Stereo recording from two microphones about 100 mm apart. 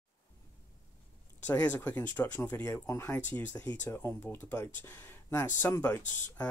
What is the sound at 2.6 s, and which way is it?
Speech, 30° left (ahead or behind).